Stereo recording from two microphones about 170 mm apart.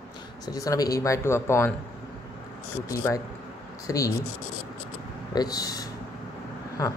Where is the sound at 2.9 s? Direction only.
20° left (ahead or behind).